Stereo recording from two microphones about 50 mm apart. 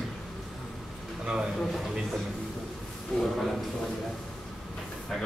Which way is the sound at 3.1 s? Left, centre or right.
Centre.